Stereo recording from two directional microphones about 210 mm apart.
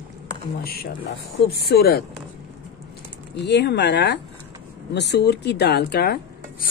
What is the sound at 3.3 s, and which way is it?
Rub, 55° left (ahead or behind).